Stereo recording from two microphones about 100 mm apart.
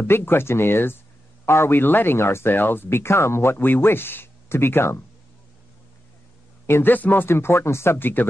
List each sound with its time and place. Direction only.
0.0 s speech: 20° left (ahead or behind)
6.6 s speech: 20° left (ahead or behind)